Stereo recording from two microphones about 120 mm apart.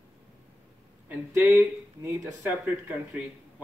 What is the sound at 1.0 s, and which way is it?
Speech, 15° right (ahead or behind).